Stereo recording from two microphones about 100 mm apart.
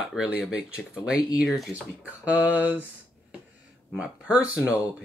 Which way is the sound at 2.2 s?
15° right (ahead or behind).